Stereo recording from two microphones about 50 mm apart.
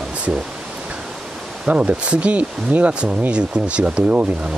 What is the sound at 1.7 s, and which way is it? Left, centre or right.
Speech, right.